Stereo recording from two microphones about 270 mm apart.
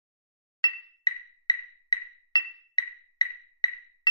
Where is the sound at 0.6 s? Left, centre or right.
Centre.